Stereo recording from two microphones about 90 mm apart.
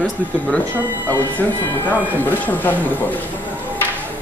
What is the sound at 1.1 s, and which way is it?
Speech, 20° left (ahead or behind).